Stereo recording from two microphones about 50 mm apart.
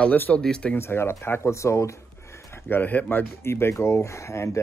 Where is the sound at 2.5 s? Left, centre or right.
Left.